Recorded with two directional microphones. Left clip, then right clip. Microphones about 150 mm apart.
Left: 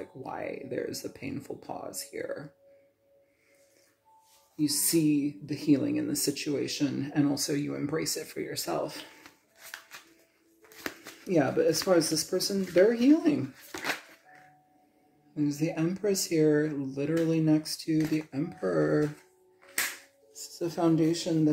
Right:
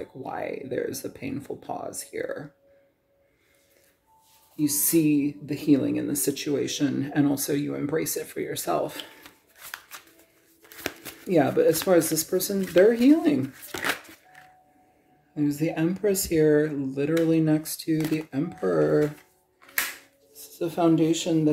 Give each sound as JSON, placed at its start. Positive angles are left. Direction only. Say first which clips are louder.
{"t": 0.0, "sound": "speech", "louder": "right 4 dB", "side_deg": -20}
{"t": 4.6, "sound": "speech", "louder": "right 4 dB", "side_deg": -35}
{"t": 11.2, "sound": "speech", "louder": "right 5 dB", "side_deg": -20}
{"t": 13.7, "sound": "a sound", "louder": "right 5 dB", "side_deg": -60}
{"t": 15.3, "sound": "speech", "louder": "right 4 dB", "side_deg": -25}
{"t": 20.5, "sound": "speech", "louder": "right 5 dB", "side_deg": -15}